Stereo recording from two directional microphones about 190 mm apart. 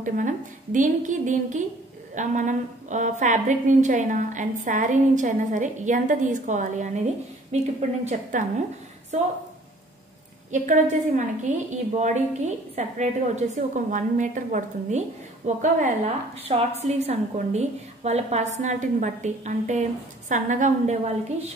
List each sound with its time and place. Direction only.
0.0 s a woman's voice: 45° right (ahead or behind)
10.5 s a woman's voice: 40° right (ahead or behind)